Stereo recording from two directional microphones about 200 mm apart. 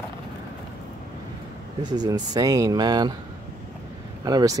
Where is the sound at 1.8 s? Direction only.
20° right (ahead or behind).